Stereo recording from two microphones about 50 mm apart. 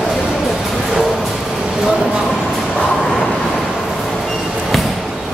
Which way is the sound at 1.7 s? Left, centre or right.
Centre.